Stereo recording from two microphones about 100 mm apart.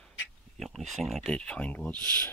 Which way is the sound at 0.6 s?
Centre (ahead or behind).